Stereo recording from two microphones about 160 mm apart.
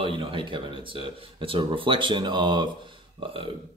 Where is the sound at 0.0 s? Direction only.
35° right (ahead or behind).